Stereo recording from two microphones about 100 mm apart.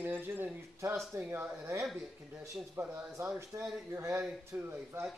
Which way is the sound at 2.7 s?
25° right (ahead or behind).